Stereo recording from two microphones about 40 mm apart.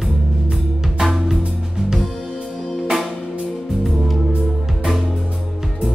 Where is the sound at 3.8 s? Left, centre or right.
Centre.